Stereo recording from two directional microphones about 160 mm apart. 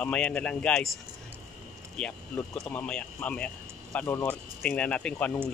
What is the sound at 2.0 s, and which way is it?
A man's voice, 5° left (ahead or behind).